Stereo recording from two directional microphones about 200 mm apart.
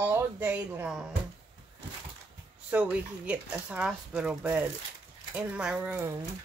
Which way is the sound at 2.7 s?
5° right (ahead or behind).